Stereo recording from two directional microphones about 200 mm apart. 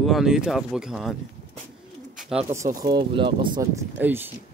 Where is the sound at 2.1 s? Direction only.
Centre (ahead or behind).